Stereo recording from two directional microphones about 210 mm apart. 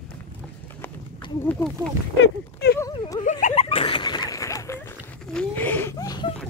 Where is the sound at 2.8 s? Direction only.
15° left (ahead or behind).